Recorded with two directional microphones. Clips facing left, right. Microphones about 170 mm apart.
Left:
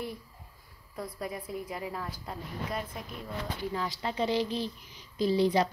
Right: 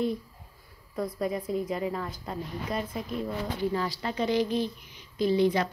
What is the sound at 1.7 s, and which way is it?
Speech, 5° left (ahead or behind).